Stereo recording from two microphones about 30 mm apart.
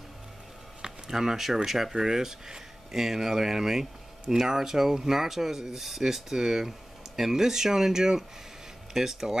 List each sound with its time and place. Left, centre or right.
0.8 s speech: centre
4.6 s speech: centre